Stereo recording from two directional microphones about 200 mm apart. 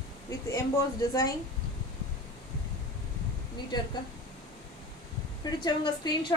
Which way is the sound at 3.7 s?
20° left (ahead or behind).